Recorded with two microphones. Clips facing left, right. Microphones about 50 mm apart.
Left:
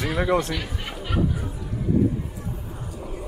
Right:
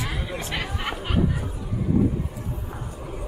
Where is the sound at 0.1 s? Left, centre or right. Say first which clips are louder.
Left 10 dB; left.